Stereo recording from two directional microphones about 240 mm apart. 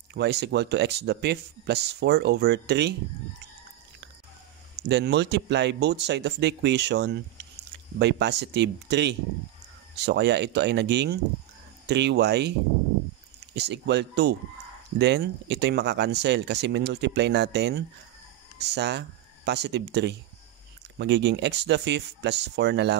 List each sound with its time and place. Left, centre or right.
0.1 s speech: right
4.8 s speech: right
13.6 s speech: right